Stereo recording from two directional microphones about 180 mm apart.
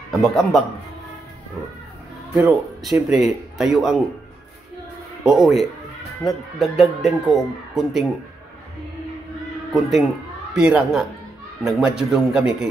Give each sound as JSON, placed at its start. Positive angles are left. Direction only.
{"t": 0.1, "sound": "speech", "side_deg": 0}
{"t": 2.3, "sound": "speech", "side_deg": 0}
{"t": 5.2, "sound": "speech", "side_deg": 0}
{"t": 9.7, "sound": "speech", "side_deg": 0}